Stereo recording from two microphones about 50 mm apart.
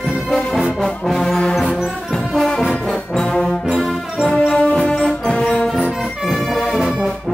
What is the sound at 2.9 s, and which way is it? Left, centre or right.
Brass instrument, centre.